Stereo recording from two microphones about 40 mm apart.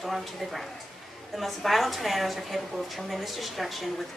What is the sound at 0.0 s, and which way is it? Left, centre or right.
A woman's voice, centre.